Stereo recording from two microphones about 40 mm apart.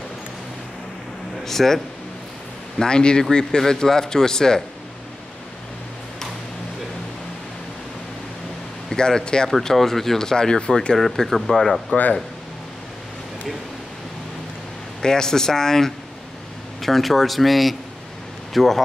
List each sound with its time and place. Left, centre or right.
1.4 s a man's voice: centre
2.8 s a man's voice: left
8.9 s speech: centre
9.5 s a man's voice: centre
11.0 s speech: centre
15.0 s a man's voice: centre